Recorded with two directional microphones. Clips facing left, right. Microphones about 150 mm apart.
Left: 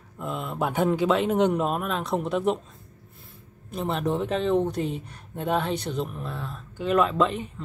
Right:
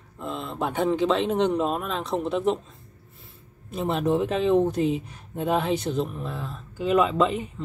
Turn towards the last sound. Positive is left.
turn(degrees=-5)  # may be behind; listen again after turning